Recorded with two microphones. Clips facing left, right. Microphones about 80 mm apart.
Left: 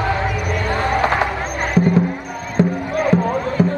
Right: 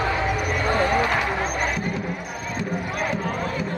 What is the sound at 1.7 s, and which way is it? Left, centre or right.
Music, left.